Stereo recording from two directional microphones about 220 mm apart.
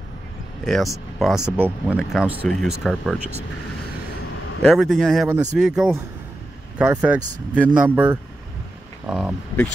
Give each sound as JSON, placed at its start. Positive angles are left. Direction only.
{"t": 1.2, "sound": "speech", "side_deg": -5}
{"t": 4.6, "sound": "speech", "side_deg": 0}